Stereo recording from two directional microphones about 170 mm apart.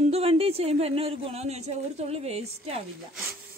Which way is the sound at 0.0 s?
35° right (ahead or behind).